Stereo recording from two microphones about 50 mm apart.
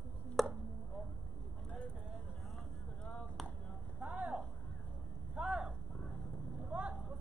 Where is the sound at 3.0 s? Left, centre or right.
Left.